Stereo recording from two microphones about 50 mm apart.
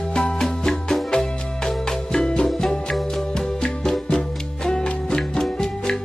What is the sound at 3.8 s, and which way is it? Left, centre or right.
Music, centre.